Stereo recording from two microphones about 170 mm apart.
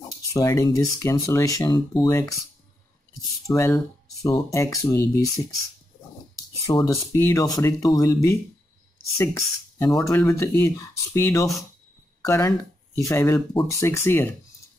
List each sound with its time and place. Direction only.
0.3 s speech: 20° left (ahead or behind)
3.4 s speech: 20° left (ahead or behind)
6.7 s speech: 20° left (ahead or behind)